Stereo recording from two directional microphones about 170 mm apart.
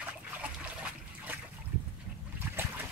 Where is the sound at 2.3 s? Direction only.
10° right (ahead or behind).